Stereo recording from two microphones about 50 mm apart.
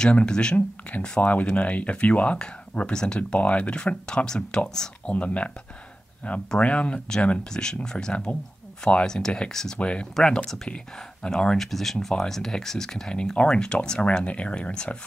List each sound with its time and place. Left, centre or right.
0.0 s speech: centre
2.3 s speech: centre
5.1 s speech: left
7.5 s speech: centre
10.2 s speech: centre